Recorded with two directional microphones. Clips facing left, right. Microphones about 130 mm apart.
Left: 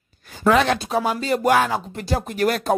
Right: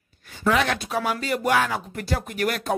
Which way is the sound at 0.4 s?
45° left (ahead or behind).